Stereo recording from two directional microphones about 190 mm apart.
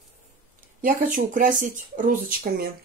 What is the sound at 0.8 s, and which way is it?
Speech, 45° right (ahead or behind).